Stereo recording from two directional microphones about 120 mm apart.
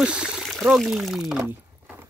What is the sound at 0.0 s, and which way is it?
Water, 5° right (ahead or behind).